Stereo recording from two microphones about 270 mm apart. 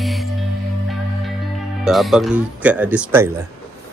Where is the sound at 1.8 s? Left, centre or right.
Centre.